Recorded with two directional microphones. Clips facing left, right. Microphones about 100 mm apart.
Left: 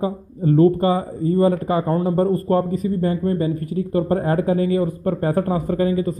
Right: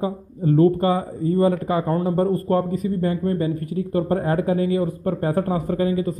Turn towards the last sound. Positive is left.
turn(degrees=35)  # may be behind; listen again after turning